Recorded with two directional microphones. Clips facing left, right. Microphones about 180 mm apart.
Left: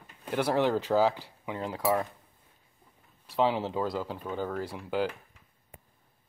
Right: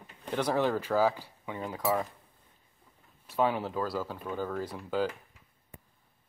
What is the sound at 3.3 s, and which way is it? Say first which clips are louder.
Speech: left 2 dB; 20° left (ahead or behind).